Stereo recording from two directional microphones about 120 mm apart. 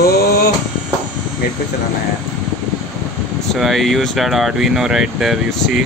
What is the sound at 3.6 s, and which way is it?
A man's voice, centre (ahead or behind).